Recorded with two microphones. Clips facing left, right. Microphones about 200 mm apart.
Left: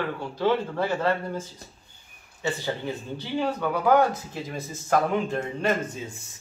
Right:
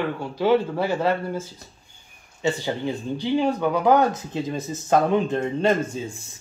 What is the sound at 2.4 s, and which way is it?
Speech, 15° right (ahead or behind).